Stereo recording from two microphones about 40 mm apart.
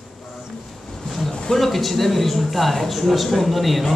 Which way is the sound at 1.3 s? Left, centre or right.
Centre.